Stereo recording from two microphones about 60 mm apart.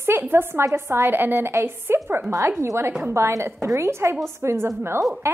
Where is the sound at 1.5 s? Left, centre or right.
Right.